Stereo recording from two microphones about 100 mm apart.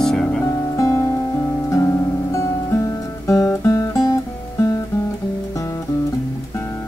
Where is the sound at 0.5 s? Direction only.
30° left (ahead or behind).